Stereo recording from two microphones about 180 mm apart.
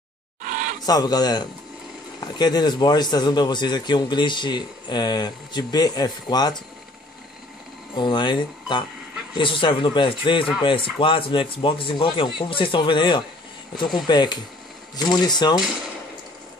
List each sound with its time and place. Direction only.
0.4 s a sound: 45° right (ahead or behind)
0.8 s a man's voice: 20° left (ahead or behind)
7.9 s a man's voice: 25° left (ahead or behind)